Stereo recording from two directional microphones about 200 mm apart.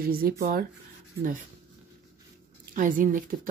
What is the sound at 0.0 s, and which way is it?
Speech, 45° right (ahead or behind).